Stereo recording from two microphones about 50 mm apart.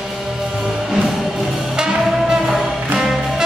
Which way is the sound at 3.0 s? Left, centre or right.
Centre.